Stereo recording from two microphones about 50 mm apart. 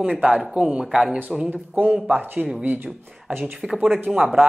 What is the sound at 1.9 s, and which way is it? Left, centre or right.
Speech, right.